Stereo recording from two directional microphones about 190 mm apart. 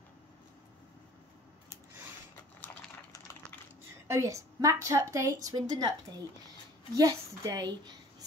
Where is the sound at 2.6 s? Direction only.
10° left (ahead or behind).